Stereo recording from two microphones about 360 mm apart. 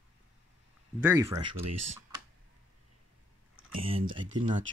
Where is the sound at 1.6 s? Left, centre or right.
Right.